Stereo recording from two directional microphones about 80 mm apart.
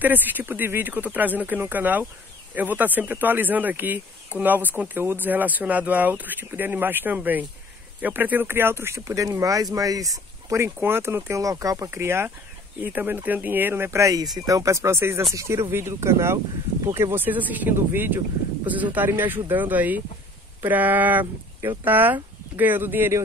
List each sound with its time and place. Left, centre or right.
0.0 s speech: right
9.0 s speech: right
13.8 s speech: right
14.1 s speech: right
17.1 s speech: right